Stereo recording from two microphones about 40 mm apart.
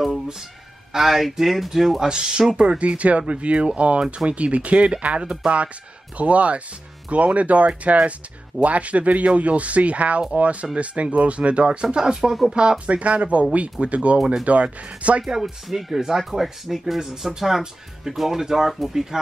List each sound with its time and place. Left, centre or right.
0.9 s speech: centre
2.0 s speech: centre
12.5 s speech: right
15.4 s speech: centre
15.9 s speech: centre